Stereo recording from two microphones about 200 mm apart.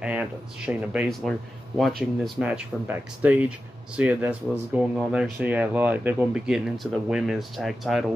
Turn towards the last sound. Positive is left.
turn(degrees=0)  # may be behind; listen again after turning